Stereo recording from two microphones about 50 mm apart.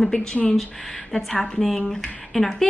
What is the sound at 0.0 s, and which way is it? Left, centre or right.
A woman's voice, centre.